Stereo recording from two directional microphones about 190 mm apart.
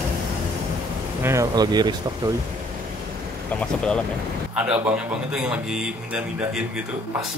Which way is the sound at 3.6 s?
5° left (ahead or behind).